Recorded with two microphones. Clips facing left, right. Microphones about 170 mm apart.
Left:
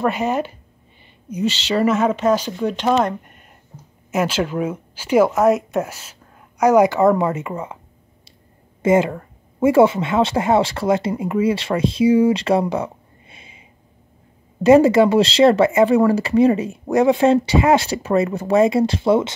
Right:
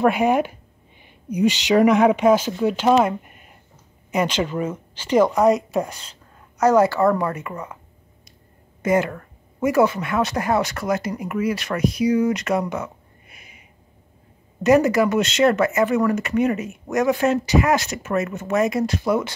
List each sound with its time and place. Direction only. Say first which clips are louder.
0.0 s speech: right 2 dB; 10° right (ahead or behind); by 7.7 s 25° left (ahead or behind)
8.8 s speech: left 4 dB; 25° left (ahead or behind)